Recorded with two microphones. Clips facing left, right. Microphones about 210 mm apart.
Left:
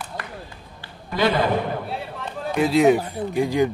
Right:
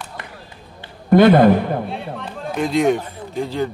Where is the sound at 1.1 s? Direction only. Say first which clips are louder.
Right 10 dB; 55° right (ahead or behind).